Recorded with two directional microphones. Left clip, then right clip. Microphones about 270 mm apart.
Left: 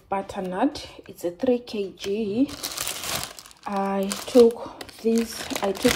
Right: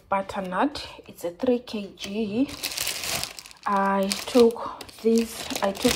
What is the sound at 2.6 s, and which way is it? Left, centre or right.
Crumpling, centre.